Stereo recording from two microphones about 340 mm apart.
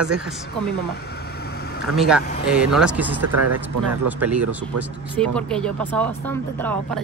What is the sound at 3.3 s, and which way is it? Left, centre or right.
Speech, right.